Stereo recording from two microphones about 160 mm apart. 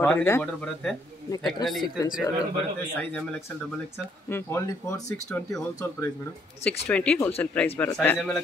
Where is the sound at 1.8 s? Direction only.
25° left (ahead or behind).